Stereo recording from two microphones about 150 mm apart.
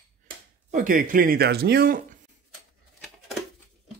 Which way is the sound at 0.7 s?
60° right (ahead or behind).